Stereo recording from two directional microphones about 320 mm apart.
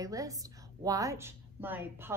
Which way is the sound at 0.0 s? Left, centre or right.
Centre.